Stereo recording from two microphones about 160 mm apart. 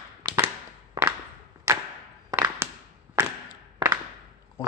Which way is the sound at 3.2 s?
15° right (ahead or behind).